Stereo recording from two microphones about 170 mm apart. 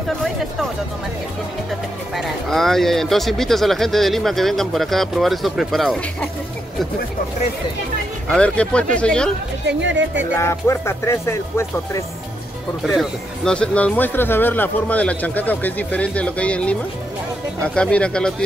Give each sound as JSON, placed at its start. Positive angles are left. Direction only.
{"t": 2.1, "sound": "speech", "side_deg": 0}
{"t": 8.3, "sound": "speech", "side_deg": 5}
{"t": 9.7, "sound": "speech", "side_deg": -90}
{"t": 10.3, "sound": "speech", "side_deg": 15}
{"t": 12.8, "sound": "speech", "side_deg": 0}